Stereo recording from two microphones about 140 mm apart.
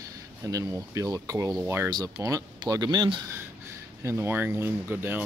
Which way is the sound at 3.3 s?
20° right (ahead or behind).